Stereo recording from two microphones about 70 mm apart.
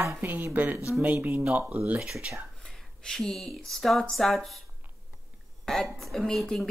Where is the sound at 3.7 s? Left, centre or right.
Centre.